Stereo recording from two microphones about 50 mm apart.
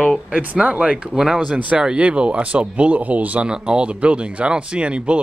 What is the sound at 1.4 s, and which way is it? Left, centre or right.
Speech, right.